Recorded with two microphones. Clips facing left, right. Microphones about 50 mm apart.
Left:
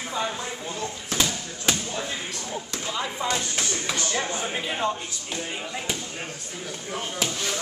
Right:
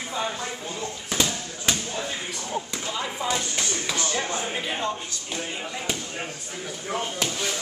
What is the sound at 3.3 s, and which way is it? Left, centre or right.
Speech, centre.